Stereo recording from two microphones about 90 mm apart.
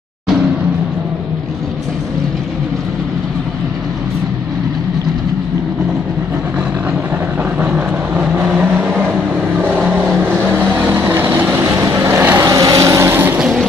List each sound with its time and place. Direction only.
7.5 s vehicle: 15° right (ahead or behind)
10.9 s vehicle: 25° right (ahead or behind)
11.8 s vehicle: 35° right (ahead or behind)